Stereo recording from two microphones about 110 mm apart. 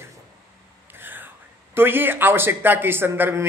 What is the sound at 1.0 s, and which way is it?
Whispering, 15° right (ahead or behind).